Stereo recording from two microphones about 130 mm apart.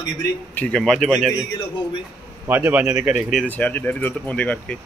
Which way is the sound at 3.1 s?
Centre (ahead or behind).